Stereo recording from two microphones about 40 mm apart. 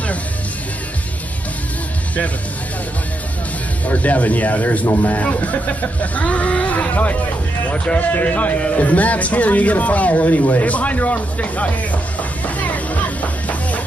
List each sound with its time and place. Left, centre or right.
3.8 s speech: left
8.1 s speech: left